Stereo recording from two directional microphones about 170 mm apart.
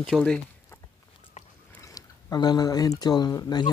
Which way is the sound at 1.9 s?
20° left (ahead or behind).